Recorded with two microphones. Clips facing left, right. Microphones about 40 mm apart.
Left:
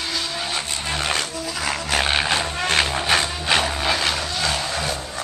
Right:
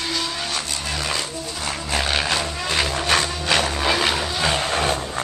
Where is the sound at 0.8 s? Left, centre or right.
Left.